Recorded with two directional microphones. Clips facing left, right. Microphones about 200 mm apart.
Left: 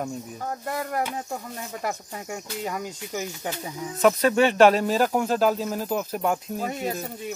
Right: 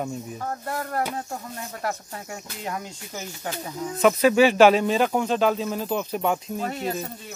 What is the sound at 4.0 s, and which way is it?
Speech, 5° right (ahead or behind).